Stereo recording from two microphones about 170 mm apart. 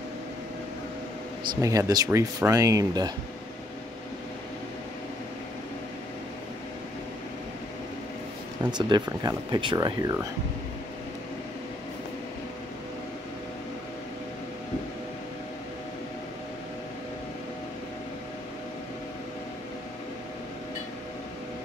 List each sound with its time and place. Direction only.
1.5 s speech: 20° right (ahead or behind)
8.7 s speech: 25° right (ahead or behind)